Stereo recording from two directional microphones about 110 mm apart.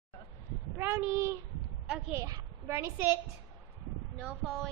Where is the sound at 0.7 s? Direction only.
20° right (ahead or behind).